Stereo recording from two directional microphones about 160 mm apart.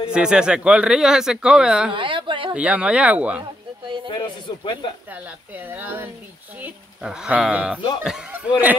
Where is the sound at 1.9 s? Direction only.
30° right (ahead or behind).